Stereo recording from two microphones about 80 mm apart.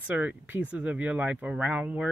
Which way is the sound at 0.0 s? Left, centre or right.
Right.